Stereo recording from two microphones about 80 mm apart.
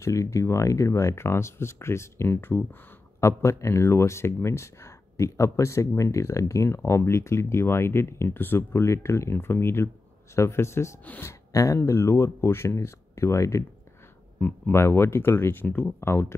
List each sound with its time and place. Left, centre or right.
0.0 s speech: left
11.5 s speech: left